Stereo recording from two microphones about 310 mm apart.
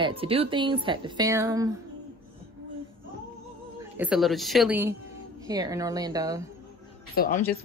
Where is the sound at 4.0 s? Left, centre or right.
Centre.